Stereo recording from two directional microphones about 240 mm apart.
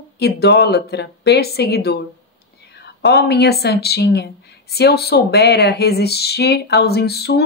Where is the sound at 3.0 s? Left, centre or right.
Left.